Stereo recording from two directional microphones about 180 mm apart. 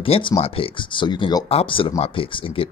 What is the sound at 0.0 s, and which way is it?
Speech, 30° left (ahead or behind).